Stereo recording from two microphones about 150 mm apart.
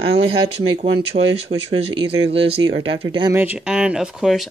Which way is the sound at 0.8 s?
40° right (ahead or behind).